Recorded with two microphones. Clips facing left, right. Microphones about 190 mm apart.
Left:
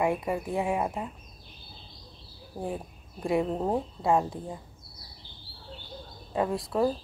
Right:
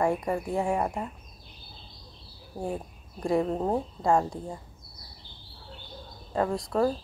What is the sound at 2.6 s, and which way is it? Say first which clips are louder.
Speech: right 1 dB; centre (ahead or behind).